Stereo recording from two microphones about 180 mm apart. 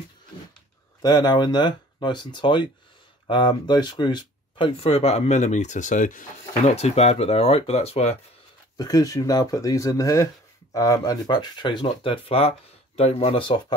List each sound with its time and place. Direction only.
1.0 s speech: 25° left (ahead or behind)
8.7 s speech: 20° left (ahead or behind)